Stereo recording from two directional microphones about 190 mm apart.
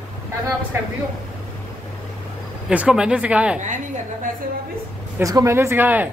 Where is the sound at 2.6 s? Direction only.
5° right (ahead or behind).